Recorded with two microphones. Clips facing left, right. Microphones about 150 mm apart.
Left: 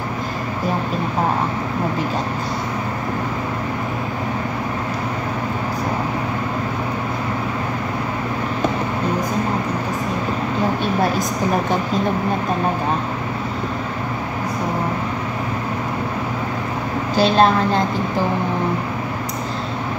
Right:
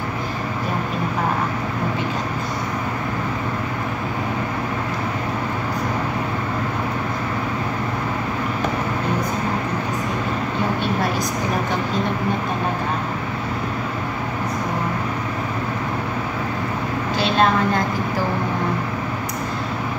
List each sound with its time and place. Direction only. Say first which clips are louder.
17.2 s a woman's voice: left 4 dB; 35° left (ahead or behind)